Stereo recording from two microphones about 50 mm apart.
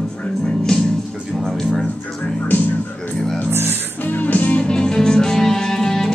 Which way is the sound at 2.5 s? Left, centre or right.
Left.